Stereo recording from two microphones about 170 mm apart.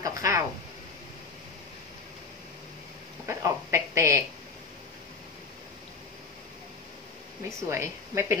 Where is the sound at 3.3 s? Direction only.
15° right (ahead or behind).